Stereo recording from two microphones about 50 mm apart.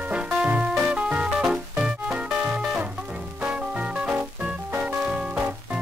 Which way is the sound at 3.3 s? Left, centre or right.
Right.